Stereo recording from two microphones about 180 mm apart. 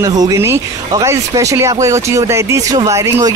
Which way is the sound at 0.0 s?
20° right (ahead or behind).